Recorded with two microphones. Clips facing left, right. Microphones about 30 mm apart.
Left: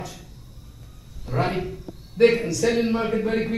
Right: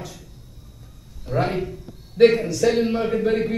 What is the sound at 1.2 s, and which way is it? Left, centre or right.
Speech, centre.